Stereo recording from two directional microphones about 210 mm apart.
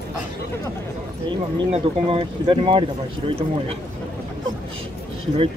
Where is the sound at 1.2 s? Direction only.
25° right (ahead or behind).